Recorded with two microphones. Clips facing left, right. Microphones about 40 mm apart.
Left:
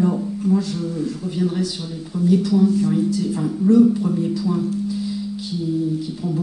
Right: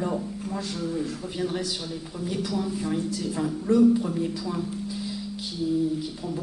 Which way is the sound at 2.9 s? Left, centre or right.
Centre.